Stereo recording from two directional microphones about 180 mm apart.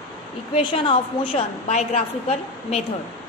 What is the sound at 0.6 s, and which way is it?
A woman's voice, 25° left (ahead or behind).